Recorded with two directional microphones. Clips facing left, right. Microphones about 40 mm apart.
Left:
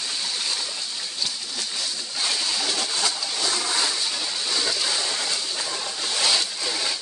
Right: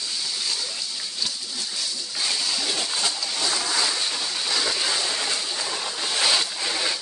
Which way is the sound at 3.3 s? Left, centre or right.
Centre.